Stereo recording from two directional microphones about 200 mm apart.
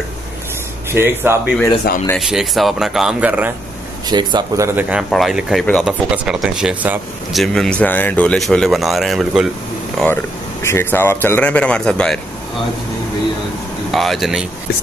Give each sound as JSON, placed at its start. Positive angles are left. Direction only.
{"t": 0.9, "sound": "speech", "side_deg": -10}
{"t": 2.1, "sound": "speech", "side_deg": 0}
{"t": 4.1, "sound": "speech", "side_deg": -20}
{"t": 4.7, "sound": "speech", "side_deg": -5}
{"t": 10.6, "sound": "a man's voice", "side_deg": 10}
{"t": 13.9, "sound": "speech", "side_deg": 0}